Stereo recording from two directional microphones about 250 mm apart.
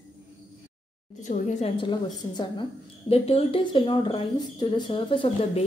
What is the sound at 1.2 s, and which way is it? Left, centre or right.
A woman's voice, left.